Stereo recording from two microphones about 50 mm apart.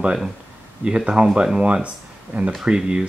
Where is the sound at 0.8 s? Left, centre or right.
Centre.